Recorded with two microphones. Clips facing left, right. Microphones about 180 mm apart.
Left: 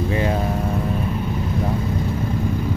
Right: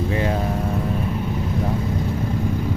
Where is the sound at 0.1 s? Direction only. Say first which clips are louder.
Left 1 dB; 15° left (ahead or behind).